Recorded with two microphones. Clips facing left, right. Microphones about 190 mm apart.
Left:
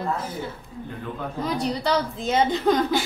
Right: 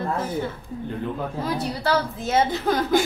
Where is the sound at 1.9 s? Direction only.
5° right (ahead or behind).